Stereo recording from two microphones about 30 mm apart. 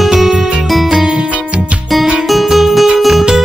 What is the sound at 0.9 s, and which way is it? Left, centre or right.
Music, right.